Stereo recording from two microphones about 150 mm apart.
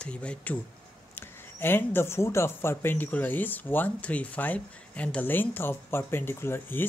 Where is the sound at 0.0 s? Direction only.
5° left (ahead or behind).